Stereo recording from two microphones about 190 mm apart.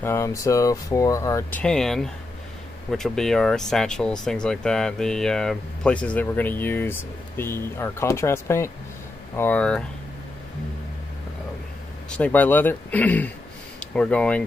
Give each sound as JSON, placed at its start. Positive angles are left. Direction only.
{"t": 0.0, "sound": "speech", "side_deg": 15}
{"t": 1.6, "sound": "speech", "side_deg": 5}
{"t": 12.1, "sound": "speech", "side_deg": 10}